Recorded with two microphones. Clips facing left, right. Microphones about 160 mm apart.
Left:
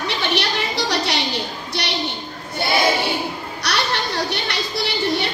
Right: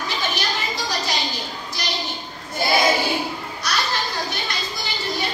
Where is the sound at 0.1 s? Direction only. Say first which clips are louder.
Left 4 dB; 70° left (ahead or behind).